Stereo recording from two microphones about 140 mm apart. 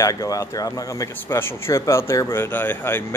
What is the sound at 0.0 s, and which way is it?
A man's voice, 25° left (ahead or behind).